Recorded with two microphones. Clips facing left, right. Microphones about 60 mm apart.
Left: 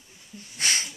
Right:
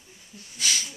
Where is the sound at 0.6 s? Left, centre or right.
Left.